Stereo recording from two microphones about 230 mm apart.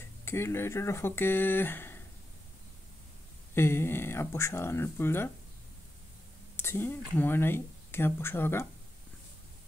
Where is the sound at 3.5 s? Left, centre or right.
Centre.